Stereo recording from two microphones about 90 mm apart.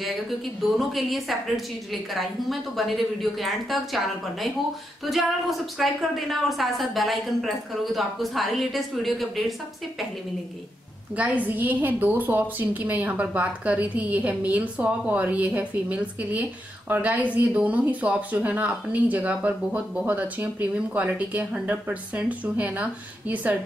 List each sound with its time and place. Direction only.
0.6 s a woman's voice: centre (ahead or behind)
11.1 s a woman's voice: 15° right (ahead or behind)